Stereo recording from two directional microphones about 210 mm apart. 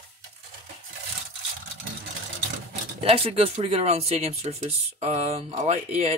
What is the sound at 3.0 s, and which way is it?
Speech, 25° right (ahead or behind).